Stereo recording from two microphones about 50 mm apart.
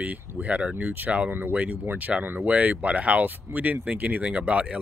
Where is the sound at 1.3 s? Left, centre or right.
Right.